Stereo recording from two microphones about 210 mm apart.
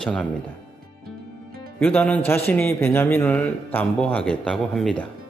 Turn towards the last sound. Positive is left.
turn(degrees=0)  # may be behind; listen again after turning